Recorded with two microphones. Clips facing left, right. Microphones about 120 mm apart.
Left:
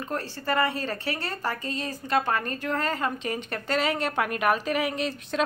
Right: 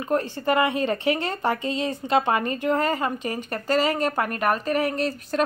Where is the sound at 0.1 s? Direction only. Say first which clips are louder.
Right 6 dB; 15° right (ahead or behind).